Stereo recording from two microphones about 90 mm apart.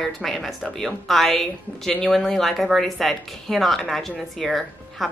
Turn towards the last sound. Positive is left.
turn(degrees=0)  # may be behind; listen again after turning